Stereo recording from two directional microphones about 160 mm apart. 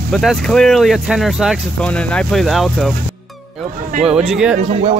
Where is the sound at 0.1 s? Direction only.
Centre (ahead or behind).